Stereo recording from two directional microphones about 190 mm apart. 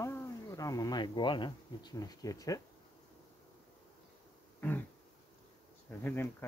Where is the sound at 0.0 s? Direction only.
15° left (ahead or behind).